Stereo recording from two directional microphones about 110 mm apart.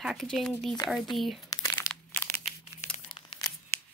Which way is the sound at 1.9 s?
10° left (ahead or behind).